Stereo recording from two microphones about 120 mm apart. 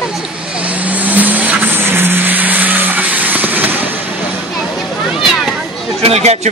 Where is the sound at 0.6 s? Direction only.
10° right (ahead or behind).